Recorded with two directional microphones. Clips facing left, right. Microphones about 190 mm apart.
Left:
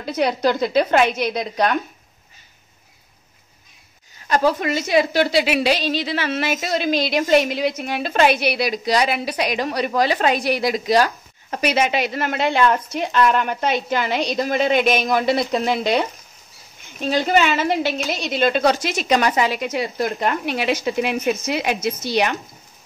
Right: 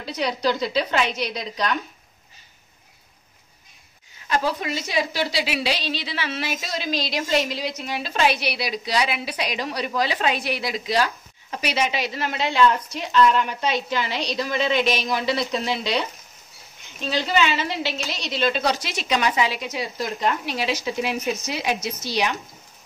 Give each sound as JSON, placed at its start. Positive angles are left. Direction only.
{"t": 0.0, "sound": "a woman's voice", "side_deg": 55}
{"t": 4.3, "sound": "a woman's voice", "side_deg": 50}